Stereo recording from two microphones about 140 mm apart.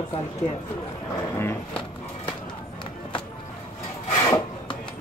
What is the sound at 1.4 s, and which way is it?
Speech, 15° left (ahead or behind).